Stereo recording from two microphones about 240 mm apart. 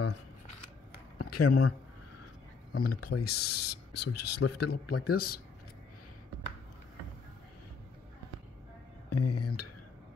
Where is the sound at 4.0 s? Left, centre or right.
Left.